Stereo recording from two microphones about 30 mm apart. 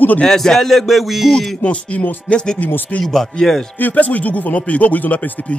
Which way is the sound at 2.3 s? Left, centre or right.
Left.